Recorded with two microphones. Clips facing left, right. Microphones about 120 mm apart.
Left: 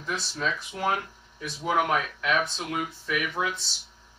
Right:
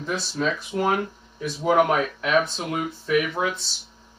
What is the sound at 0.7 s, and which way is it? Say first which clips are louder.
Speech: right 7 dB; 30° right (ahead or behind).